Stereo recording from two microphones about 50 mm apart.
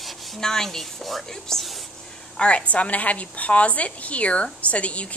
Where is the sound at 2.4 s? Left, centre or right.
Left.